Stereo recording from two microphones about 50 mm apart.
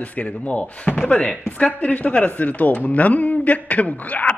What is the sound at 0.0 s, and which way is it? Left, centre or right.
Speech, left.